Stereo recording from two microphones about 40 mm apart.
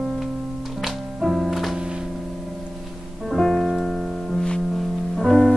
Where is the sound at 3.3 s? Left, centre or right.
Centre.